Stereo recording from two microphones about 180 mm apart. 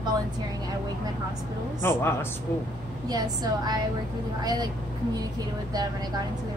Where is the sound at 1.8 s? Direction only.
15° left (ahead or behind).